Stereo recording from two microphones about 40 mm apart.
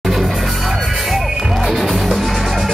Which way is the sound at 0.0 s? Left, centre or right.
Centre.